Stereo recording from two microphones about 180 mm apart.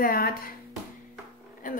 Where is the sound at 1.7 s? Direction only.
50° left (ahead or behind).